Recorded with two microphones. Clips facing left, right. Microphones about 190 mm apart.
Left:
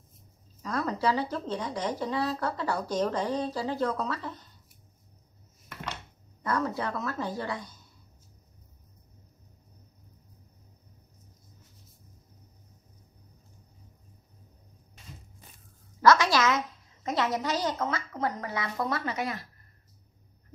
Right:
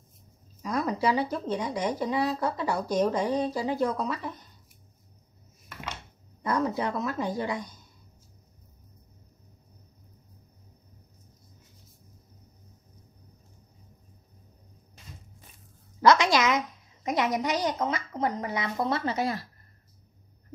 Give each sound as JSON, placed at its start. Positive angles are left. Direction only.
{"t": 0.6, "sound": "speech", "side_deg": -15}
{"t": 6.4, "sound": "speech", "side_deg": -15}
{"t": 16.0, "sound": "a woman's voice", "side_deg": -20}